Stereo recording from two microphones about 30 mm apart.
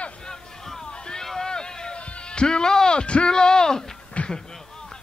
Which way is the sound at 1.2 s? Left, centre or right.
Centre.